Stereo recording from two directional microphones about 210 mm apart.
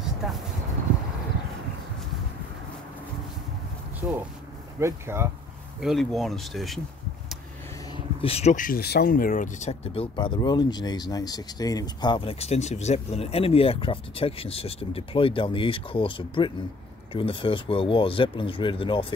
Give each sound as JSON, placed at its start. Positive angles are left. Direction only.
{"t": 4.7, "sound": "speech", "side_deg": -10}
{"t": 5.8, "sound": "speech", "side_deg": 0}
{"t": 7.9, "sound": "speech", "side_deg": 25}